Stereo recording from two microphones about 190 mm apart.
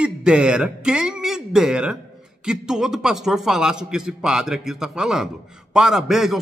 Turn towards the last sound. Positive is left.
turn(degrees=0)  # may be behind; listen again after turning